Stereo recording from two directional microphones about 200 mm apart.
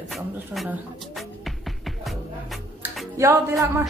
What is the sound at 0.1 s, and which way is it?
Music, centre (ahead or behind).